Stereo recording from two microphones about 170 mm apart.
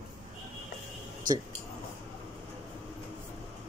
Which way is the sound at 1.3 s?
55° right (ahead or behind).